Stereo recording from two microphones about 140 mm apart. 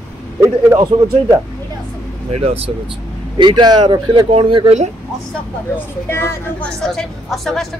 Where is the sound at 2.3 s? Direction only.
45° right (ahead or behind).